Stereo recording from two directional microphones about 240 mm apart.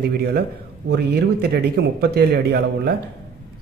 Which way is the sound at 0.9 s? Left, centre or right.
Right.